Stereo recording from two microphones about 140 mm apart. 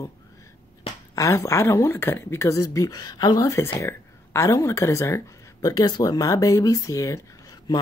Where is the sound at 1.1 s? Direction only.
20° left (ahead or behind).